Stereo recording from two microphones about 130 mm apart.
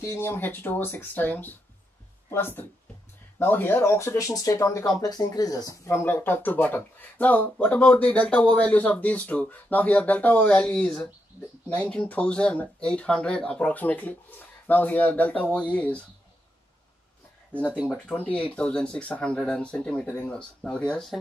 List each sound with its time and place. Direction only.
0.0 s speech: 20° left (ahead or behind)
17.8 s speech: 5° left (ahead or behind)